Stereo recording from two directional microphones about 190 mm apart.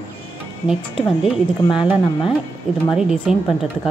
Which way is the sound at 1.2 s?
5° right (ahead or behind).